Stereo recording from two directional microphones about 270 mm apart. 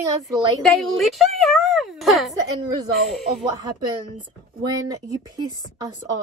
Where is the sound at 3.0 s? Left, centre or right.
Centre.